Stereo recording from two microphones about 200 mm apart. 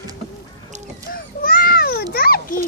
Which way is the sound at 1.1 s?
45° left (ahead or behind).